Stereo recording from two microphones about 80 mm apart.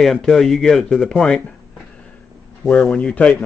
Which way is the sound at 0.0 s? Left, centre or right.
Centre.